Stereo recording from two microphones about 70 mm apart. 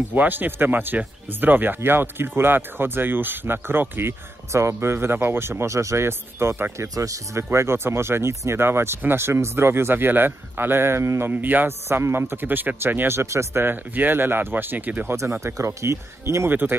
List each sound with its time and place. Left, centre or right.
0.1 s speech: right
7.5 s speech: right
15.4 s speech: right
16.4 s speech: right